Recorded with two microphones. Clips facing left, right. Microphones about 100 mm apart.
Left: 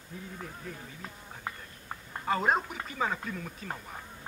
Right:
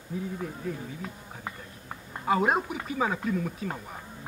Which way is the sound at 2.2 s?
10° right (ahead or behind).